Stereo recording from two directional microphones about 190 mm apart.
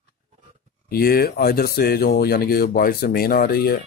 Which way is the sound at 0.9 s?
55° left (ahead or behind).